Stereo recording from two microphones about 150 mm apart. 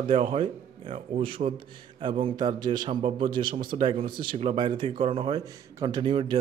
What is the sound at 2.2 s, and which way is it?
A man's voice, 30° right (ahead or behind).